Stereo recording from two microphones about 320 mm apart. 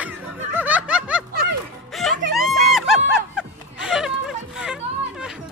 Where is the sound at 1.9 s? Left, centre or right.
Centre.